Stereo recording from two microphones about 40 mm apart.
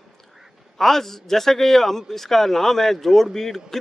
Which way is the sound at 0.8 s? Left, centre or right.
Centre.